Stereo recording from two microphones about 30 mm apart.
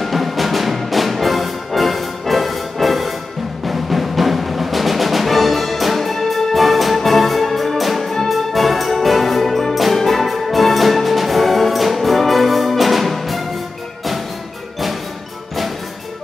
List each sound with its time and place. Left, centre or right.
0.0 s music: centre